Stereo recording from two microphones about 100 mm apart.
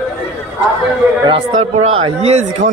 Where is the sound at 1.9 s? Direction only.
90° right.